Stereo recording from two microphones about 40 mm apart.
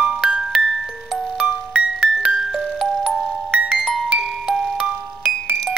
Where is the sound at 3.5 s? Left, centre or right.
Right.